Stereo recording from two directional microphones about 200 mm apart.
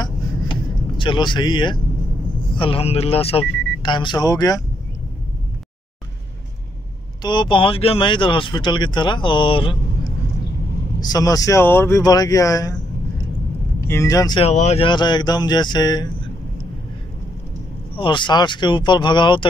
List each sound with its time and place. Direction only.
0.0 s vehicle: 25° left (ahead or behind)
2.5 s speech: 25° left (ahead or behind)
7.2 s speech: 20° left (ahead or behind)
11.0 s speech: 20° left (ahead or behind)
13.8 s speech: 15° left (ahead or behind)
14.4 s speech: 35° left (ahead or behind)
17.9 s speech: 25° left (ahead or behind)